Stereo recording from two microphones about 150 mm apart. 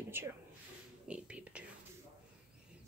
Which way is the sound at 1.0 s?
5° right (ahead or behind).